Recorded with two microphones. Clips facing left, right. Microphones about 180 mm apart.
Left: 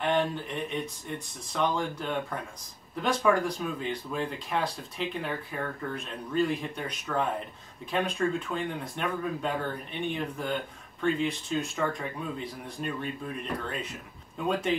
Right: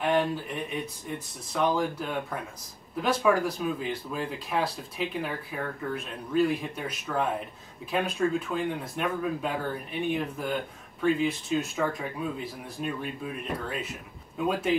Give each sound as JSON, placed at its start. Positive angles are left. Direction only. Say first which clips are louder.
{"t": 0.0, "sound": "speech", "louder": "right 2 dB", "side_deg": -5}